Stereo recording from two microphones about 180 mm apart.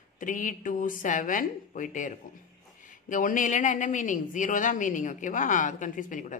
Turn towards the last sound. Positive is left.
turn(degrees=45)  # may be behind; listen again after turning